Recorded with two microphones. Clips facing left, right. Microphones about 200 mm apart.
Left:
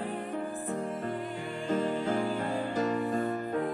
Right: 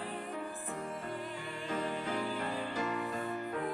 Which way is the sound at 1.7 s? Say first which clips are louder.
Left 7 dB; 45° left (ahead or behind).